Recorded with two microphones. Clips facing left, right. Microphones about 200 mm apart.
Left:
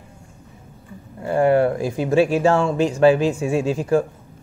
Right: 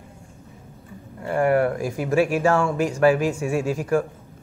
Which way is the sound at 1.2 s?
25° left (ahead or behind).